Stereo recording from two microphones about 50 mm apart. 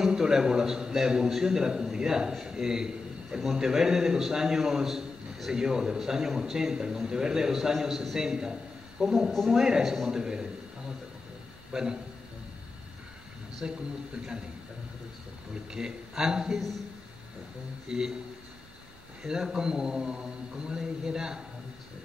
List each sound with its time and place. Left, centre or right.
0.0 s a man's voice: centre
11.7 s a man's voice: centre
13.6 s a man's voice: centre
15.7 s a man's voice: centre
17.8 s a man's voice: centre
19.2 s a man's voice: centre